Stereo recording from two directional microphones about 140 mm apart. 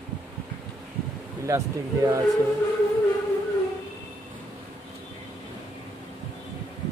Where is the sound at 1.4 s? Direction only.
20° right (ahead or behind).